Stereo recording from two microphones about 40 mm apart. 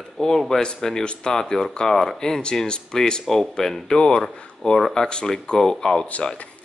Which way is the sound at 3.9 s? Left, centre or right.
Left.